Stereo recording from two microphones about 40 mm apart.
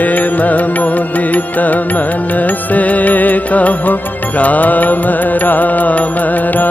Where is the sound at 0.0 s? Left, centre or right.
Left.